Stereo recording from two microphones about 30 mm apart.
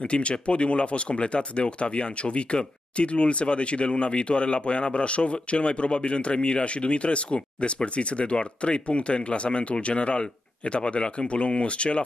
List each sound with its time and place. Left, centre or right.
0.1 s speech: left